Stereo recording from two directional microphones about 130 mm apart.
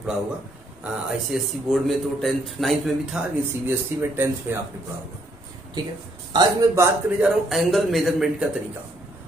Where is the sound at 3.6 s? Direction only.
15° right (ahead or behind).